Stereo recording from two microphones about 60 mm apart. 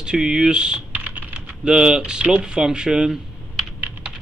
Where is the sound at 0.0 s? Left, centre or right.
Centre.